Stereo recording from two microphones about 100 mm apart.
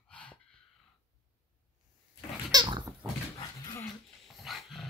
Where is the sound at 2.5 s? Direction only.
45° right (ahead or behind).